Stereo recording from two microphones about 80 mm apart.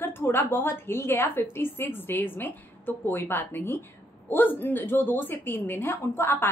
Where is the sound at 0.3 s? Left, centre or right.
Left.